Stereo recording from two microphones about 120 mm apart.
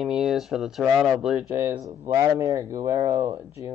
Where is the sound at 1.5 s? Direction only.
25° right (ahead or behind).